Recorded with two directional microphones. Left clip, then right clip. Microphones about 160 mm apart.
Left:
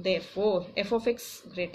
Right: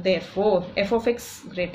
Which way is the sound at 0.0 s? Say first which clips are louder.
Right 5 dB; 25° left (ahead or behind).